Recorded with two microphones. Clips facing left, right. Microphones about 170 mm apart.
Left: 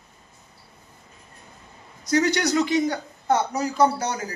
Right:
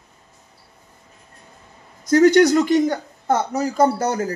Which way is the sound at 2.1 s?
50° right (ahead or behind).